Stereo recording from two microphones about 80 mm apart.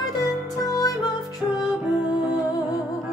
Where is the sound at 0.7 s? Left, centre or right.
Left.